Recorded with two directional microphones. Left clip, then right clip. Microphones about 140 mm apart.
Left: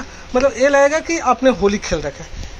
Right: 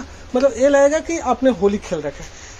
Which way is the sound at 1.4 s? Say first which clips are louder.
Left 2 dB; centre (ahead or behind).